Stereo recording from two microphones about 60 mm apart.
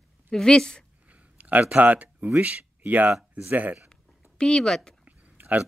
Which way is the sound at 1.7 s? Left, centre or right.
Right.